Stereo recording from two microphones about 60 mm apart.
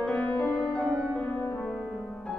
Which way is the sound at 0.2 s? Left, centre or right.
Left.